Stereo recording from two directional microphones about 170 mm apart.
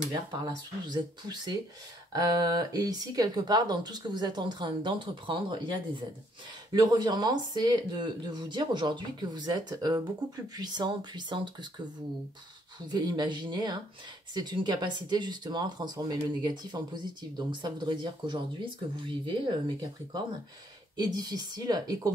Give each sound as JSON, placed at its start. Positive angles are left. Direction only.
{"t": 0.8, "sound": "speech", "side_deg": -25}
{"t": 12.8, "sound": "speech", "side_deg": -25}